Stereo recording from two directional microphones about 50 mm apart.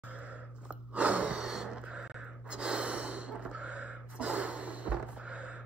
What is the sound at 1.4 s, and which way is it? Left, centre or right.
Gasp, centre.